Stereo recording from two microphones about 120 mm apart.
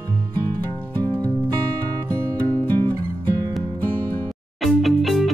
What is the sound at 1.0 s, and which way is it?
Music, 35° right (ahead or behind).